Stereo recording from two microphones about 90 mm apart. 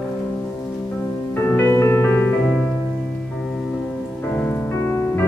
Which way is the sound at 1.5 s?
30° left (ahead or behind).